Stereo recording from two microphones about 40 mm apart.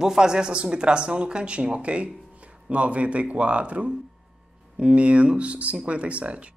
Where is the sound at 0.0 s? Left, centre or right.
Centre.